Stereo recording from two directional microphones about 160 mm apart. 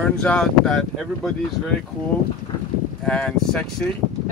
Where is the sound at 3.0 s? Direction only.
5° left (ahead or behind).